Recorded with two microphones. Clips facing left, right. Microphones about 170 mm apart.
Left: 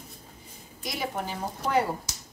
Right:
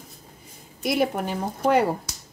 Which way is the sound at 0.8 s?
60° right (ahead or behind).